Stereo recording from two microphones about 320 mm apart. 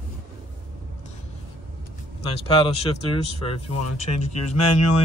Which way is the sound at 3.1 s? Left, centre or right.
Centre.